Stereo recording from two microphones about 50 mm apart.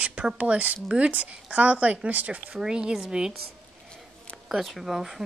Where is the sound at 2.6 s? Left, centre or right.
Centre.